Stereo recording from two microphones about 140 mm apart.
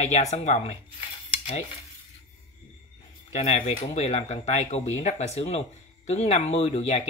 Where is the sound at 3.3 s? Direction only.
55° left (ahead or behind).